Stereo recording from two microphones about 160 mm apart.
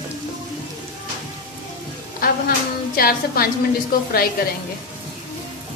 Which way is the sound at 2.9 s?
70° left (ahead or behind).